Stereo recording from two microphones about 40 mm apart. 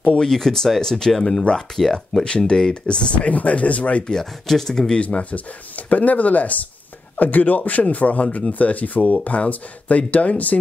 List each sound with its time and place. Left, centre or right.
0.3 s speech: centre
2.2 s speech: left
4.1 s speech: centre
4.9 s speech: left